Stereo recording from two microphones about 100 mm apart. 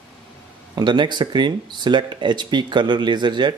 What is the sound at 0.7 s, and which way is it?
Speech, 50° right (ahead or behind).